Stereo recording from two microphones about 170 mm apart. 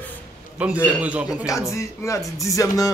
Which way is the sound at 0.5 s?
10° right (ahead or behind).